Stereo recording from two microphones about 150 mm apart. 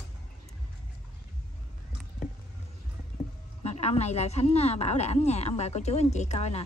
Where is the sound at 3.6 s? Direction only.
45° left (ahead or behind).